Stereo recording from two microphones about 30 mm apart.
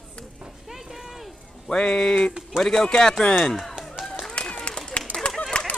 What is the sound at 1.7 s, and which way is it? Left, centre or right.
Speech, left.